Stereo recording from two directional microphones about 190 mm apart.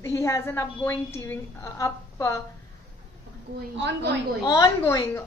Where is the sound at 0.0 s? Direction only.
15° left (ahead or behind).